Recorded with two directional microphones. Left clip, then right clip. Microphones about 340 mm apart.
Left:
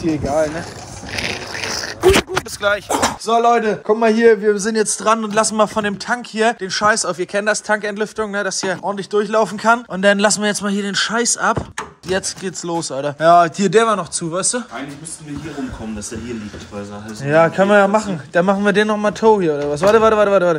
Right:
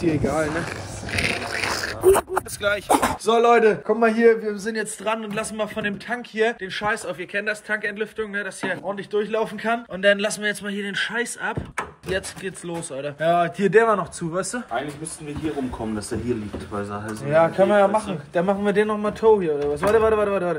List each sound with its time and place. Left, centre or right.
0.0 s speech: centre
1.1 s a sound: centre
2.6 s speech: centre
3.8 s speech: left
5.8 s speech: left
6.3 s speech: left
13.7 s speech: centre
17.2 s speech: left